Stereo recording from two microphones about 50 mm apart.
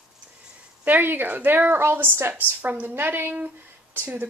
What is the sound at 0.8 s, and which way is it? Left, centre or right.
A woman's voice, right.